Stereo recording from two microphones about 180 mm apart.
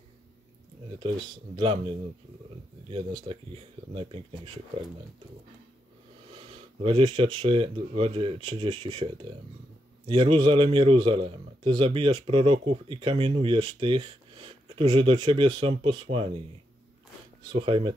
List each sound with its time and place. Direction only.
2.9 s speech: 30° right (ahead or behind)
6.3 s a man's voice: 30° right (ahead or behind)
10.0 s a man's voice: 30° right (ahead or behind)
17.5 s a man's voice: 30° right (ahead or behind)